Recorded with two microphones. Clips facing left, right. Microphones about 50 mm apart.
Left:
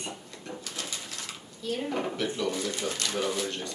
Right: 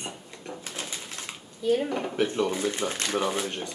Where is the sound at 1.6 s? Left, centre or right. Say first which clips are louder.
Right 5 dB; right.